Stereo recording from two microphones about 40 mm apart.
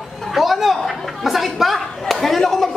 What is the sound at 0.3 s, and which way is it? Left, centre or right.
Chatter, centre.